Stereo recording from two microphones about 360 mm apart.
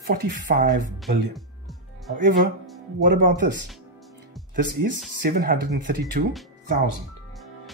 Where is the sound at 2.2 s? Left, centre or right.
Right.